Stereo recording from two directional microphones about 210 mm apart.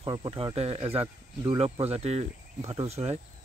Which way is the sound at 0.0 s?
20° right (ahead or behind).